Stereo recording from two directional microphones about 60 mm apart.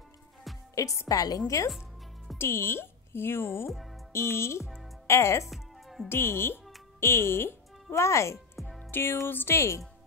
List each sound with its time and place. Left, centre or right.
0.7 s speech: left
2.3 s speech: left
5.5 s music: centre
6.0 s speech: left
8.6 s music: centre
8.9 s speech: left